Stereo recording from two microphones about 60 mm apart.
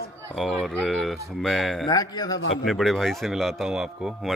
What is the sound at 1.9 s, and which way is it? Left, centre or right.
Speech, left.